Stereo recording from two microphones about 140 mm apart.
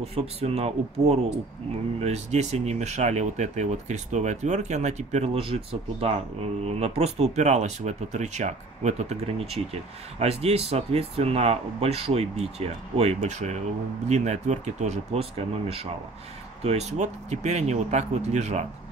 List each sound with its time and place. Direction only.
0.0 s speech: 45° right (ahead or behind)